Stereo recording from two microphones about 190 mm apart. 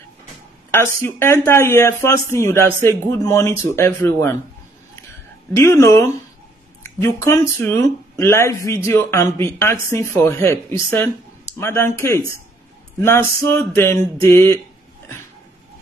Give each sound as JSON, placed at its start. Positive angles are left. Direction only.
{"t": 0.7, "sound": "speech", "side_deg": 10}
{"t": 5.6, "sound": "speech", "side_deg": 15}